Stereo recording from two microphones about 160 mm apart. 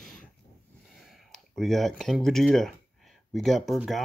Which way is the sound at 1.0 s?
Centre (ahead or behind).